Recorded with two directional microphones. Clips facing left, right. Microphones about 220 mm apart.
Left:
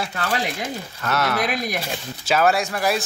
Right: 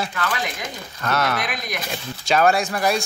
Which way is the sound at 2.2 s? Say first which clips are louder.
Right 1 dB; 5° left (ahead or behind).